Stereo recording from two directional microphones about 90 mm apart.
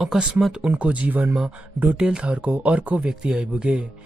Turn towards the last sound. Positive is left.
turn(degrees=-10)  # may be behind; listen again after turning